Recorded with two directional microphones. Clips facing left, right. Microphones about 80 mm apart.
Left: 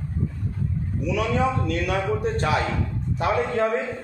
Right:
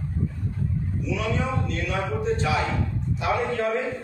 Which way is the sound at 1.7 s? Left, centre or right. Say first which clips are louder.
Left 4 dB; left.